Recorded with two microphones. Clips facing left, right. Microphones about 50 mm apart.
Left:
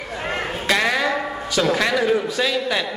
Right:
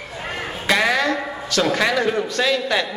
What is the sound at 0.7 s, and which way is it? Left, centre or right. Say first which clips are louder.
A man's voice: right 2 dB; centre.